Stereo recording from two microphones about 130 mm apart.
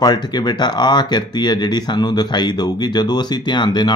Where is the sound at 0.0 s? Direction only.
30° left (ahead or behind).